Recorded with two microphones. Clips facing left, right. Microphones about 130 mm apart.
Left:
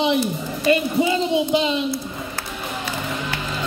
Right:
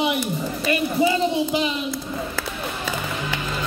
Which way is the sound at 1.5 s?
25° left (ahead or behind).